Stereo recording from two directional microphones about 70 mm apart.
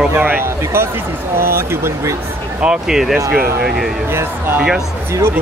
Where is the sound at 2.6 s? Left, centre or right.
Centre.